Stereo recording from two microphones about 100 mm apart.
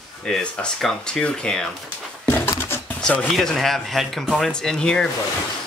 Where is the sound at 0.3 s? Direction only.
5° left (ahead or behind).